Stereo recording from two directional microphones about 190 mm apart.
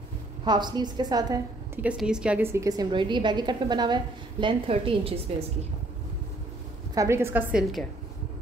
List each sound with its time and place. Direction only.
0.5 s a woman's voice: 20° right (ahead or behind)
1.8 s a woman's voice: 5° right (ahead or behind); by 5.2 s 30° right (ahead or behind)
7.0 s a woman's voice: 15° right (ahead or behind)